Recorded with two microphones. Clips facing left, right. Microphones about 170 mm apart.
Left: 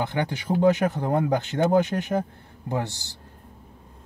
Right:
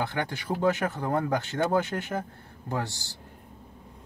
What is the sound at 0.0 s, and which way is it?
A man's voice, 20° left (ahead or behind).